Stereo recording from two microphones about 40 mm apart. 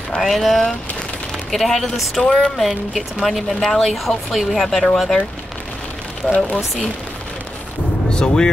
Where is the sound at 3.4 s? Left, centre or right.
Centre.